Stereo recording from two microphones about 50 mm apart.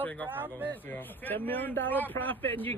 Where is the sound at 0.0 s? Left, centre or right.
Left.